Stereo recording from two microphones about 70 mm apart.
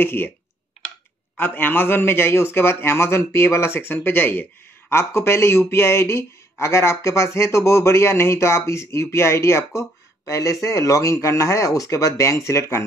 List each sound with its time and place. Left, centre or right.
0.0 s a man's voice: left
1.3 s a man's voice: left
9.8 s a sound: left
10.6 s speech: left